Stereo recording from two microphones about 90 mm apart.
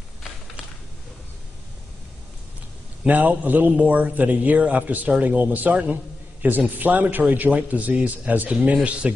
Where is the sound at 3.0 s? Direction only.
20° right (ahead or behind).